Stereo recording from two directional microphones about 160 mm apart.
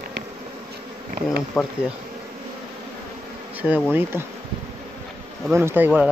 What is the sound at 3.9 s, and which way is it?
Speech, 15° right (ahead or behind).